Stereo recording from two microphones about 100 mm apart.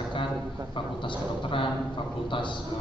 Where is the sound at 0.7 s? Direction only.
55° left (ahead or behind).